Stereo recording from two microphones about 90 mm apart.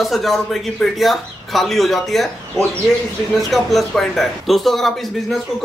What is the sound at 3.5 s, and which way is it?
Speech, centre (ahead or behind).